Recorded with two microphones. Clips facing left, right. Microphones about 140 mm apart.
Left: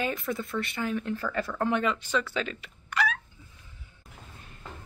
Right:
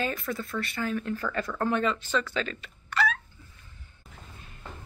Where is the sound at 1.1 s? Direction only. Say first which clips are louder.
Even; 5° left (ahead or behind).